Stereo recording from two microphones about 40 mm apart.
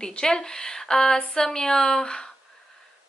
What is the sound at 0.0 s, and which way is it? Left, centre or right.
Speech, centre.